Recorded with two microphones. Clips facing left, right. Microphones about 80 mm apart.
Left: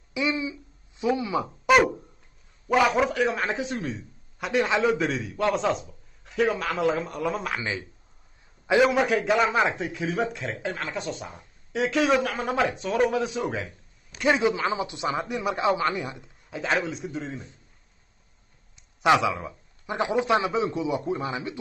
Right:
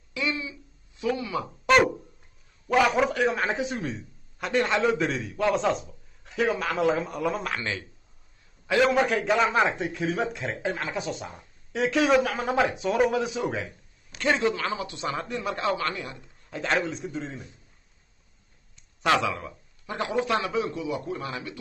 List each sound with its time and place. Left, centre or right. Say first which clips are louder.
0.1 s speech: left 3 dB; centre
1.7 s a sound: left 1 dB; centre
2.7 s a man's voice: left 1 dB; centre
8.8 s a man's voice: right 2 dB; centre
14.1 s speech: left 2 dB; centre
16.4 s a man's voice: even; centre
18.8 s speech: left 3 dB; centre